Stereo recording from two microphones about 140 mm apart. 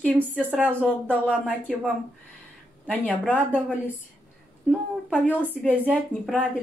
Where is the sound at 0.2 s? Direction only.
10° right (ahead or behind).